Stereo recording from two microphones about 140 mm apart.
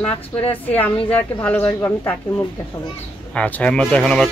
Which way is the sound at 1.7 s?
25° left (ahead or behind).